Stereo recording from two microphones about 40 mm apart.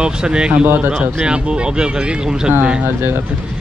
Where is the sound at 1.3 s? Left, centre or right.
Right.